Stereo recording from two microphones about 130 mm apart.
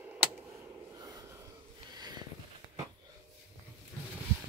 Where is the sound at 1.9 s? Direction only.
35° right (ahead or behind).